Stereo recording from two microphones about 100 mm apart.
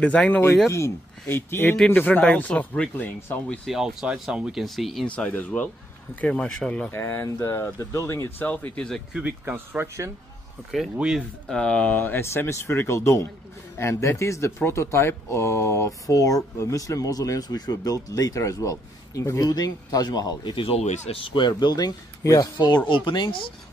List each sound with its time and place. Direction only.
0.0 s speech: 10° left (ahead or behind)
0.7 s speech: 30° left (ahead or behind)
3.4 s speech: centre (ahead or behind)
5.0 s speech: 15° left (ahead or behind)
6.9 s speech: 25° left (ahead or behind)
8.4 s speech: 15° left (ahead or behind)
9.1 s speech: 15° right (ahead or behind)
11.0 s speech: 5° right (ahead or behind)
11.4 s speech: 10° left (ahead or behind); by 20.5 s 40° left (ahead or behind)
20.5 s speech: 65° left (ahead or behind)
21.5 s speech: 45° left (ahead or behind)
22.8 s speech: 50° left (ahead or behind)